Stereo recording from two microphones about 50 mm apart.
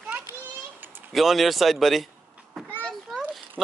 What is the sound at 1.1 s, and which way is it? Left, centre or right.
Speech, centre.